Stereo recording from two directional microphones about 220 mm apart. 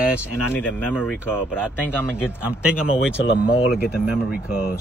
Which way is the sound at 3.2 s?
50° left (ahead or behind).